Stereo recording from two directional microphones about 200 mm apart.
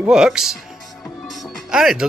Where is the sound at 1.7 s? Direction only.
5° right (ahead or behind).